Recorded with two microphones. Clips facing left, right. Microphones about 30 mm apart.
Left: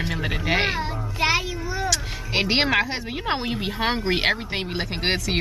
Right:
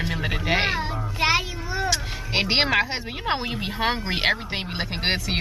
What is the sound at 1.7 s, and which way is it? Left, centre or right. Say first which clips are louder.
Music: right 1 dB; centre.